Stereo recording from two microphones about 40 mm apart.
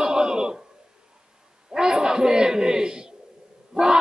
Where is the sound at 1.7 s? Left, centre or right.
Centre.